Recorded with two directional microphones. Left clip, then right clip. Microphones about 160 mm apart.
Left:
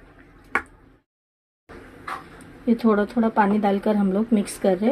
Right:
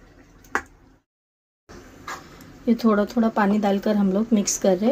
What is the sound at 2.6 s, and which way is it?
Speech, 15° right (ahead or behind).